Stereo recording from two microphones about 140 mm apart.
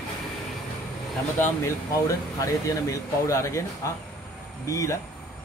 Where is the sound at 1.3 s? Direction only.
20° left (ahead or behind).